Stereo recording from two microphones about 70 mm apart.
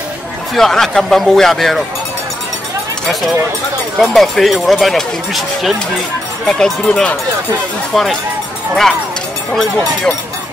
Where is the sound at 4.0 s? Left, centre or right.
Centre.